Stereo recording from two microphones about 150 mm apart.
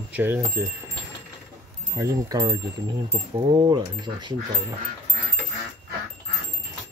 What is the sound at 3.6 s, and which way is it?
Speech, 30° right (ahead or behind).